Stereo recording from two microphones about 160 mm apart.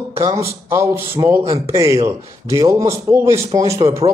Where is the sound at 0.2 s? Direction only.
20° right (ahead or behind).